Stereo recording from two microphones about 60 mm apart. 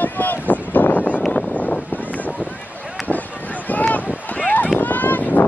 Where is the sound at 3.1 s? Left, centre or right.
Left.